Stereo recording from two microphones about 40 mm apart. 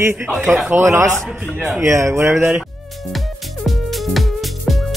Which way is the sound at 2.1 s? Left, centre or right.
Right.